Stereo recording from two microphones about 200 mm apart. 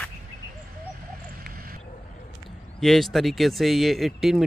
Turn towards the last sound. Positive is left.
turn(degrees=0)  # may be behind; listen again after turning